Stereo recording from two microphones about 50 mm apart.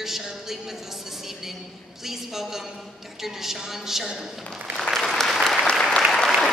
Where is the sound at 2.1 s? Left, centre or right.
Centre.